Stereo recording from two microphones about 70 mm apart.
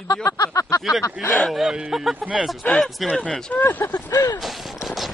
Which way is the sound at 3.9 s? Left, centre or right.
Left.